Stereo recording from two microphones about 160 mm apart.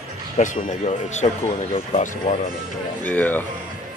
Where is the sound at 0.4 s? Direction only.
50° left (ahead or behind).